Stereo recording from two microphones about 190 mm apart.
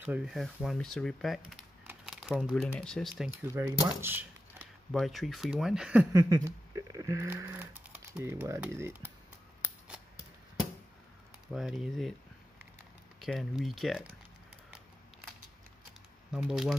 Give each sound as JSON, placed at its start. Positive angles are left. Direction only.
{"t": 0.0, "sound": "speech", "side_deg": -5}
{"t": 4.0, "sound": "a sound", "side_deg": -10}
{"t": 4.9, "sound": "speech", "side_deg": 0}
{"t": 6.1, "sound": "speech", "side_deg": -20}
{"t": 11.4, "sound": "speech", "side_deg": 0}
{"t": 13.2, "sound": "speech", "side_deg": 0}
{"t": 16.3, "sound": "speech", "side_deg": -5}